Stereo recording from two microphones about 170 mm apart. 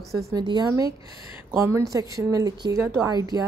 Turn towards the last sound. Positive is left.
turn(degrees=-15)  # may be behind; listen again after turning